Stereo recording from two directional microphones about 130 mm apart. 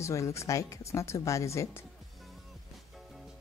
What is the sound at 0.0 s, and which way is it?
Speech, 25° left (ahead or behind).